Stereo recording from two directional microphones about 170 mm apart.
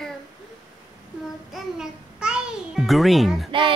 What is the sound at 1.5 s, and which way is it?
Music, 5° right (ahead or behind).